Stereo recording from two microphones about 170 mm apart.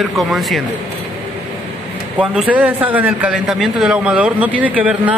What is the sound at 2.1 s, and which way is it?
A man's voice, 5° right (ahead or behind).